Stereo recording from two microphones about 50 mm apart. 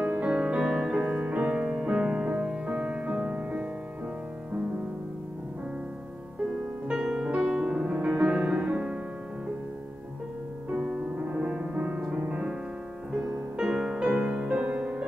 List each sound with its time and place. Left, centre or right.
0.0 s music: right
0.7 s music: centre
6.9 s music: centre
10.7 s music: centre
14.0 s music: right